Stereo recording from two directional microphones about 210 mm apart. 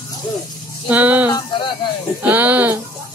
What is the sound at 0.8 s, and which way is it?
Speech, 5° right (ahead or behind).